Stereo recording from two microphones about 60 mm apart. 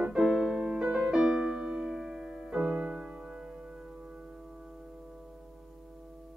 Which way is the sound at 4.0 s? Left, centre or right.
Centre.